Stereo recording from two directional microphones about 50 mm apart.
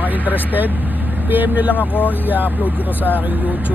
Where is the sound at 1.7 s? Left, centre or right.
Left.